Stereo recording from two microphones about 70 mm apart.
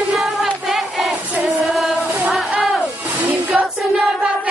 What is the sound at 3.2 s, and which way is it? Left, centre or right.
Music, right.